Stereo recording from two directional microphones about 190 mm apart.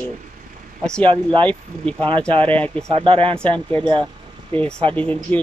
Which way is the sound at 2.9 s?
30° right (ahead or behind).